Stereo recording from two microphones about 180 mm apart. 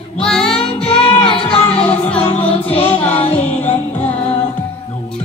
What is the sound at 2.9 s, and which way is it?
Music, 10° left (ahead or behind).